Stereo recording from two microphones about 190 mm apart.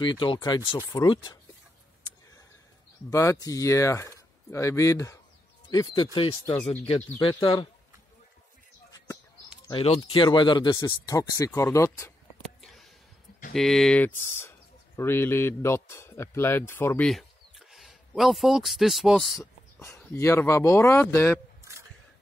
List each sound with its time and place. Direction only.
0.0 s speech: 25° left (ahead or behind)
3.1 s speech: 15° left (ahead or behind)
7.2 s speech: 25° left (ahead or behind)
9.7 s speech: 30° left (ahead or behind); by 12.1 s 15° left (ahead or behind)
12.6 s a sound: centre (ahead or behind)
13.5 s a man's voice: centre (ahead or behind)
20.2 s speech: 15° left (ahead or behind)